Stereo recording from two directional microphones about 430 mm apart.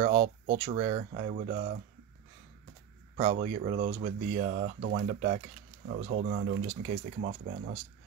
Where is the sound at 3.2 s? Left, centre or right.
Centre.